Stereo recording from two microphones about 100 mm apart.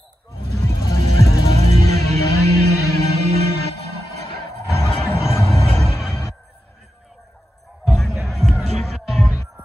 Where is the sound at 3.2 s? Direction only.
90° right.